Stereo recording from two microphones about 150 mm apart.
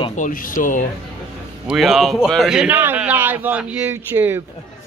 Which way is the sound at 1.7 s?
Centre (ahead or behind).